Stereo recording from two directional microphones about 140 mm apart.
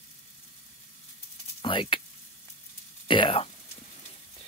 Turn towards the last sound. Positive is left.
turn(degrees=40)  # may be behind; listen again after turning